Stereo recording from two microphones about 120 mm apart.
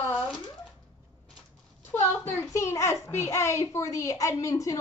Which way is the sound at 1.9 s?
20° left (ahead or behind).